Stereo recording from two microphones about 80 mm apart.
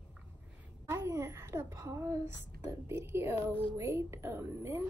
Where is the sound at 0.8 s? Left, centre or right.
Right.